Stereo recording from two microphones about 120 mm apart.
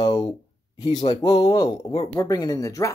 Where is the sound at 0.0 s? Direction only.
50° left (ahead or behind).